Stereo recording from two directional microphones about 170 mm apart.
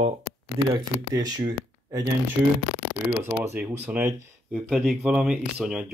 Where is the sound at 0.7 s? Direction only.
25° right (ahead or behind).